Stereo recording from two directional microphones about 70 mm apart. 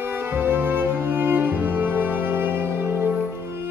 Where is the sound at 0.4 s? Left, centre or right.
Right.